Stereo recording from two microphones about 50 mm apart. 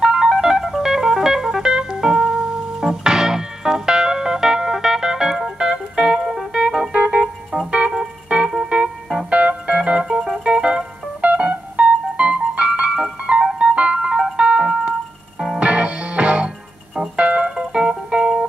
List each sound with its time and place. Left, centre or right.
0.0 s music: centre
7.0 s organ: right
7.5 s music: centre
9.3 s music: right
15.3 s music: centre
15.6 s music: right